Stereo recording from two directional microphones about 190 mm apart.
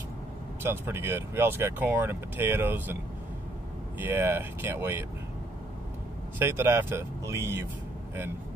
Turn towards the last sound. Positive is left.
turn(degrees=-15)  # may be behind; listen again after turning